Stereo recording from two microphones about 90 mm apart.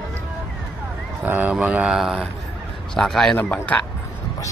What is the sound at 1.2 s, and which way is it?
Speech, 20° right (ahead or behind).